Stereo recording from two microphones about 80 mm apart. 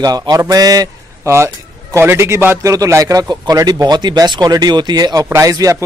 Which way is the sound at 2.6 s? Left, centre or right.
Right.